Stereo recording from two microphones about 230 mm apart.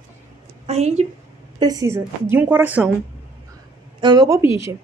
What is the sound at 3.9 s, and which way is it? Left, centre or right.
Speech, centre.